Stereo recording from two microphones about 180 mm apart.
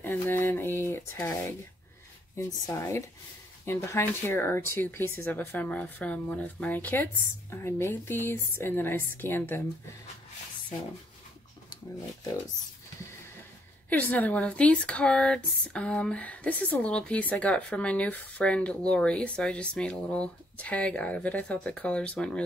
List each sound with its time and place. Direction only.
0.0 s speech: 10° left (ahead or behind)
2.3 s speech: 15° left (ahead or behind)
13.8 s speech: 10° left (ahead or behind)